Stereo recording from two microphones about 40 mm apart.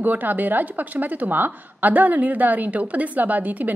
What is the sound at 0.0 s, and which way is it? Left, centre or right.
A woman's voice, right.